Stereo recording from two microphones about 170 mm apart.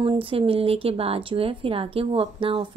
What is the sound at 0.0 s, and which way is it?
Speech, 30° right (ahead or behind).